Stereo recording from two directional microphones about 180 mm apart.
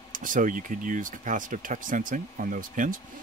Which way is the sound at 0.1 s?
45° right (ahead or behind).